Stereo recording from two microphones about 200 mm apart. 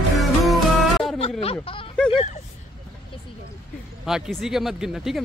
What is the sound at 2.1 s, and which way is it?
Speech, 35° left (ahead or behind).